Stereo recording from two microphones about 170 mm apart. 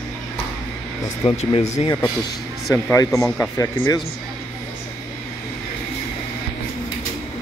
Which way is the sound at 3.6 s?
20° left (ahead or behind).